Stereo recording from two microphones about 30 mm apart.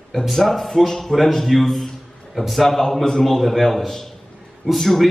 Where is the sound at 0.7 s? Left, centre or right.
Centre.